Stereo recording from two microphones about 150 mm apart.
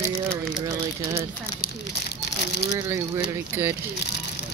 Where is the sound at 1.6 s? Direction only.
90° left.